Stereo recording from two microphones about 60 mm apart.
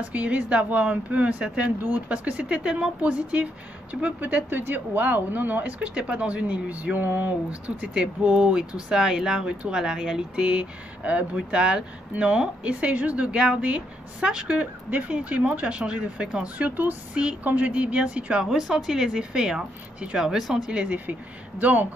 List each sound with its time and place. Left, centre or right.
0.1 s speech: right
7.6 s speech: centre
16.6 s speech: right
17.1 s speech: centre
18.5 s speech: centre
20.7 s speech: right